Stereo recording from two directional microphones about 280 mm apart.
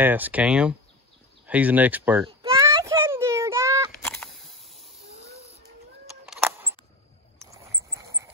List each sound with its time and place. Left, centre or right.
0.0 s speech: centre
2.4 s a sound: centre
4.0 s camera: centre
6.2 s music: centre